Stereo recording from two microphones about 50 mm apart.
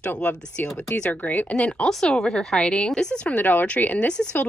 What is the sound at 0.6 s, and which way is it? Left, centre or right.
Speech, left.